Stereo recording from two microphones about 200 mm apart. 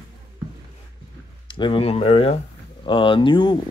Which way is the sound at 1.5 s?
25° left (ahead or behind).